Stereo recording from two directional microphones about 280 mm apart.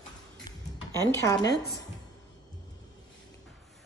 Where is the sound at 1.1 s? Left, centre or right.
Centre.